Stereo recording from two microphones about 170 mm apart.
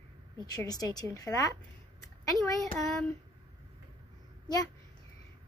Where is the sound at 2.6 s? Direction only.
Centre (ahead or behind).